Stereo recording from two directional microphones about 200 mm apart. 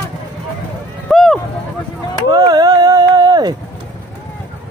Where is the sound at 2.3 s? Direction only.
20° right (ahead or behind).